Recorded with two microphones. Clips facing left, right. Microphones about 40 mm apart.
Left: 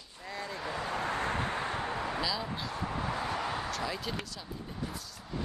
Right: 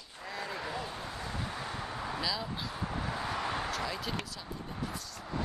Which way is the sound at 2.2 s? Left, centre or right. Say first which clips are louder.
Left 1 dB; centre.